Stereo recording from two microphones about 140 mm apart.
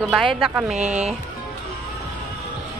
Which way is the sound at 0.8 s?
55° right (ahead or behind).